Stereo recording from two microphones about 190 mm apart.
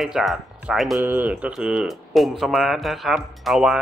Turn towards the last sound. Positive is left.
turn(degrees=0)  # may be behind; listen again after turning